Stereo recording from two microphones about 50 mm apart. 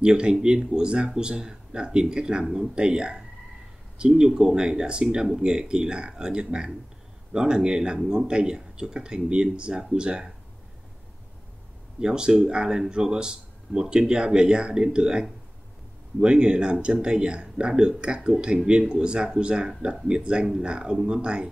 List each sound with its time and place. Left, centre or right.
0.0 s speech: centre
12.0 s speech: centre